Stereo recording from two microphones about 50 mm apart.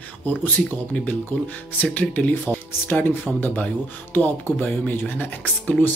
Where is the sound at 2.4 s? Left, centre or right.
Left.